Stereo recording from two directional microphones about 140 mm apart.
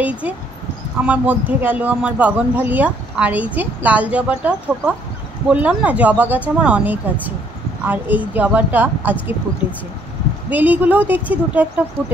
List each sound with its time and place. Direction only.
0.0 s a man's voice: 10° right (ahead or behind)
10.5 s a man's voice: 10° right (ahead or behind)